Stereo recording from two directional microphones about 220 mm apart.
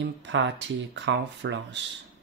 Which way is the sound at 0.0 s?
55° right (ahead or behind).